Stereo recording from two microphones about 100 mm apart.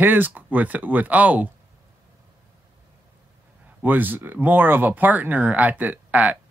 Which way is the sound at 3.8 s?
20° right (ahead or behind).